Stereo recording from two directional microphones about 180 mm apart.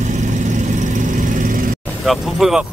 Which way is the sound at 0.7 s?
45° right (ahead or behind).